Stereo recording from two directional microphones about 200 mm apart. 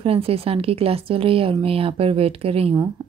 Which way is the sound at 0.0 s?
30° right (ahead or behind).